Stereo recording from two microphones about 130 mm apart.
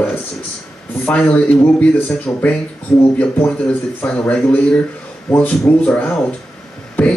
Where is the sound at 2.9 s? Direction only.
5° left (ahead or behind).